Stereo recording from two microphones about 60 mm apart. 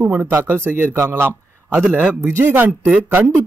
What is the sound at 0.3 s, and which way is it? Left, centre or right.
Speech, right.